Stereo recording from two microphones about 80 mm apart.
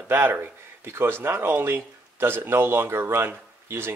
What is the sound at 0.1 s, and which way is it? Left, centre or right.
Speech, right.